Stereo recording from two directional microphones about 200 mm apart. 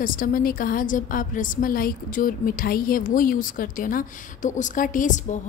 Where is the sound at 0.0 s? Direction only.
45° left (ahead or behind).